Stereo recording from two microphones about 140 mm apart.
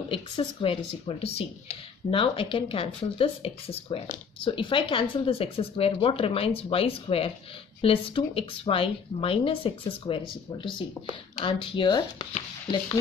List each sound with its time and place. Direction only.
0.1 s speech: 40° left (ahead or behind)